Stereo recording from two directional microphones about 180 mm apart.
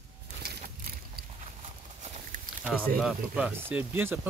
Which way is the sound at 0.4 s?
60° right (ahead or behind).